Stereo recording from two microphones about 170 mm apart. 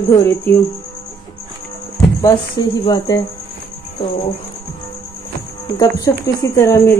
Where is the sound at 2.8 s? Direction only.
20° left (ahead or behind).